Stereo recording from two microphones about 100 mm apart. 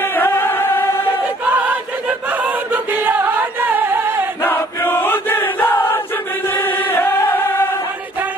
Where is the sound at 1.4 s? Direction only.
15° right (ahead or behind).